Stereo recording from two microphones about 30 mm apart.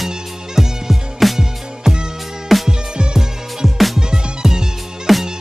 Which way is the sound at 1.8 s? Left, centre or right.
Right.